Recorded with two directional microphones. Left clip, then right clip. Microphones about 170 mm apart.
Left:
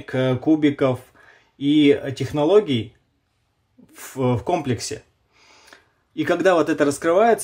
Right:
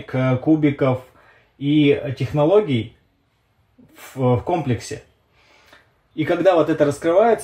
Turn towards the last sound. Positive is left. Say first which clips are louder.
# right 1 dB
turn(degrees=25)  # may be behind; listen again after turning